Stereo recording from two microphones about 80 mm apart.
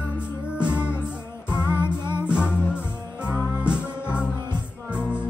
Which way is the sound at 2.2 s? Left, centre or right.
Centre.